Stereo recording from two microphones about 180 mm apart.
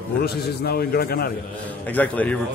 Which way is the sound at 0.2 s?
60° left (ahead or behind).